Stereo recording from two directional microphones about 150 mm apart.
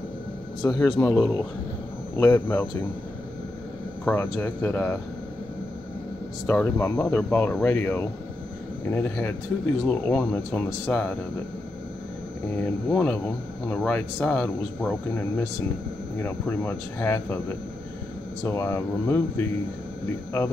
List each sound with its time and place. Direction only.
0.6 s speech: 25° left (ahead or behind)
0.9 s speech: 15° left (ahead or behind)
4.0 s speech: 10° left (ahead or behind)
6.4 s speech: 15° left (ahead or behind)
9.8 s speech: 10° left (ahead or behind)
12.5 s speech: 10° left (ahead or behind)
16.2 s speech: 15° left (ahead or behind)
18.4 s speech: 15° left (ahead or behind)